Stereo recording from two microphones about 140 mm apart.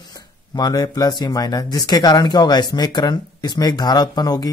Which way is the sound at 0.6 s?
30° left (ahead or behind).